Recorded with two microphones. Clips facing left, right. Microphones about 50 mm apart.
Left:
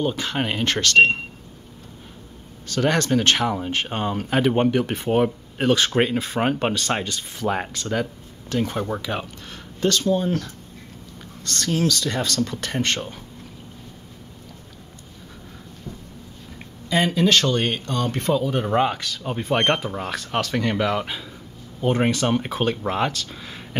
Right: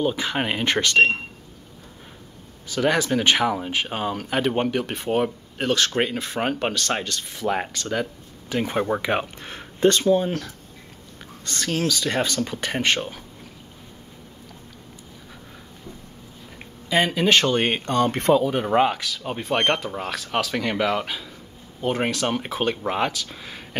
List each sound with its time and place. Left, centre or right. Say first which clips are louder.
0.0 s speech: right 1 dB; centre
2.7 s speech: left 1 dB; centre
8.5 s speech: right 1 dB; centre
16.9 s speech: even; centre
18.0 s speech: right 3 dB; right
18.4 s speech: right 1 dB; centre